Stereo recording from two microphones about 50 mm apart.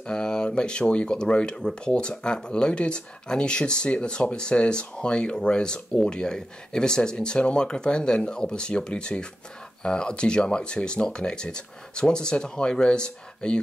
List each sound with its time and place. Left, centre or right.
0.0 s speech: centre